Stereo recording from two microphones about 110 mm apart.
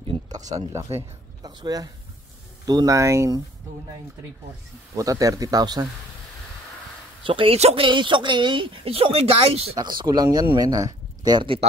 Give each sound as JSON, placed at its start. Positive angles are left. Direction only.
{"t": 0.3, "sound": "speech", "side_deg": -90}
{"t": 0.7, "sound": "speech", "side_deg": -30}
{"t": 4.9, "sound": "speech", "side_deg": -30}
{"t": 7.2, "sound": "speech", "side_deg": -50}
{"t": 7.5, "sound": "speech", "side_deg": -75}
{"t": 7.8, "sound": "speech", "side_deg": -45}
{"t": 9.8, "sound": "speech", "side_deg": -40}